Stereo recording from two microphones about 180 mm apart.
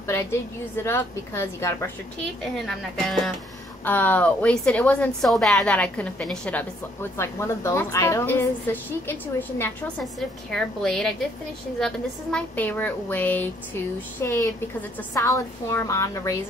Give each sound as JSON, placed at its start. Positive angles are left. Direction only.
{"t": 0.0, "sound": "a woman's voice", "side_deg": 15}
{"t": 2.4, "sound": "a woman's voice", "side_deg": 0}